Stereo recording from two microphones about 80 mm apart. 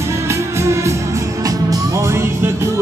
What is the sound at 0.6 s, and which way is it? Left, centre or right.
Music, right.